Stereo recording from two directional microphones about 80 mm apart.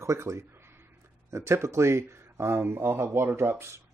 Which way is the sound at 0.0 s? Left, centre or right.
Right.